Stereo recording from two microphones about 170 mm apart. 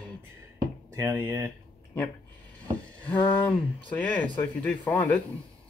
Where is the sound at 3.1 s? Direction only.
30° left (ahead or behind).